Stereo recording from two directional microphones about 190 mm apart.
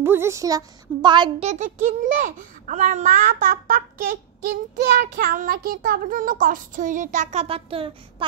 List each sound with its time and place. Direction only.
0.0 s a woman's voice: 10° right (ahead or behind)
1.5 s a child's voice: 40° right (ahead or behind)
4.9 s child singing: 50° right (ahead or behind); by 8.3 s 30° right (ahead or behind)